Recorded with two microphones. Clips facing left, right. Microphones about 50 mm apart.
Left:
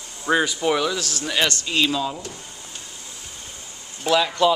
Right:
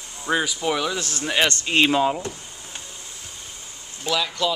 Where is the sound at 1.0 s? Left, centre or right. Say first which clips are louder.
Right 1 dB; right.